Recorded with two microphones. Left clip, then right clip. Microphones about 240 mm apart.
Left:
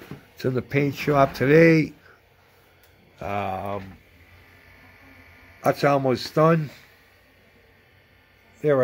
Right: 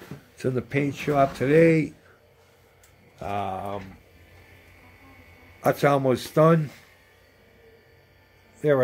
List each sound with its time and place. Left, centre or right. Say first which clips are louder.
0.4 s speech: left 2 dB; centre
3.2 s speech: left 2 dB; centre
5.6 s speech: left 1 dB; centre
8.5 s speech: left 1 dB; centre